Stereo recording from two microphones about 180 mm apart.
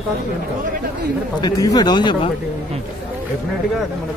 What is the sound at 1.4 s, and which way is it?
Speech, 20° left (ahead or behind).